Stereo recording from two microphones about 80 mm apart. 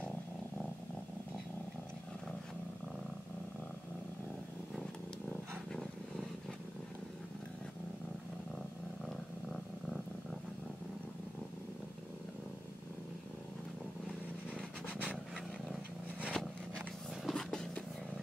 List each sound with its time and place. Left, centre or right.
5.5 s roaring cats: centre
14.9 s vehicle: centre
16.3 s a sound: centre